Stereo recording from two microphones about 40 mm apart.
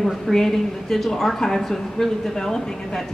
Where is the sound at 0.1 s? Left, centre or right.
Centre.